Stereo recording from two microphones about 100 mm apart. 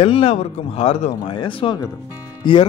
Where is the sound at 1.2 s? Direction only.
55° left (ahead or behind).